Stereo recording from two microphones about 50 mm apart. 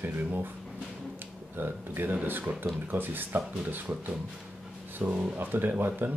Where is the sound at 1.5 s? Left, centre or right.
Right.